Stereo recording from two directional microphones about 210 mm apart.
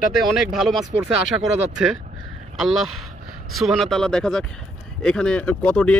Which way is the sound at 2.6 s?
Centre (ahead or behind).